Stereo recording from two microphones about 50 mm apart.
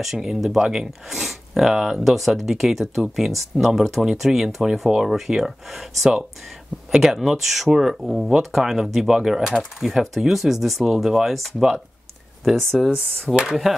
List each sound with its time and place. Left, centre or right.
0.0 s speech: centre